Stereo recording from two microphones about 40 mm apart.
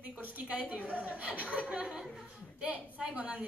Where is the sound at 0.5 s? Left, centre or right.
Right.